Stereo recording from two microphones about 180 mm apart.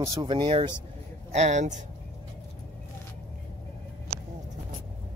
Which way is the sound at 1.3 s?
40° right (ahead or behind).